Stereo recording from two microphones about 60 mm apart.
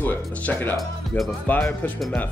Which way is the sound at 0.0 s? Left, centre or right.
Left.